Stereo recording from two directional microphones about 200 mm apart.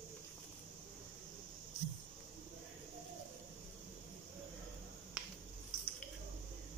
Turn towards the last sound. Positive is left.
turn(degrees=-5)  # may be behind; listen again after turning